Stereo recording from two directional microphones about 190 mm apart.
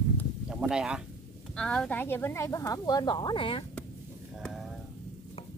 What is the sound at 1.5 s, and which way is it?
Speech, 5° left (ahead or behind).